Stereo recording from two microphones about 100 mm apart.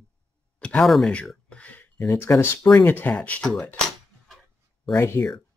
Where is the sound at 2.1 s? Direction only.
30° left (ahead or behind).